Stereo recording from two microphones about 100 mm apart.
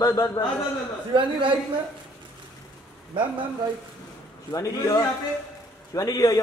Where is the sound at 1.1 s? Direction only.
55° right (ahead or behind).